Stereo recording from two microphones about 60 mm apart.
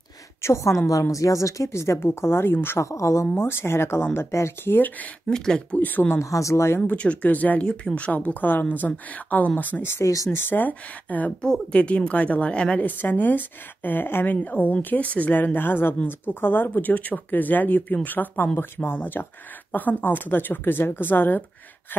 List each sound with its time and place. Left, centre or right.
0.4 s a woman's voice: left
2.2 s a woman's voice: left
2.8 s a woman's voice: left
3.3 s speech: left
5.3 s speech: centre
5.8 s a woman's voice: left
6.1 s speech: left
6.9 s a woman's voice: left
10.0 s a woman's voice: left
10.5 s a woman's voice: left
12.8 s a woman's voice: left